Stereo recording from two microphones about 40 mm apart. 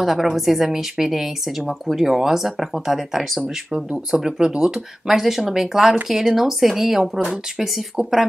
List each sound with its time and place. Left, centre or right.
0.0 s speech: centre